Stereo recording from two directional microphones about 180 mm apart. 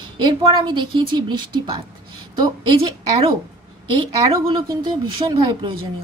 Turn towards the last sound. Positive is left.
turn(degrees=-25)  # may be behind; listen again after turning